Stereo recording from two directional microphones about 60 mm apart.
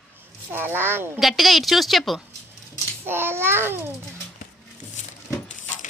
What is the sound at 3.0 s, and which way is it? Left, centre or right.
Speech, right.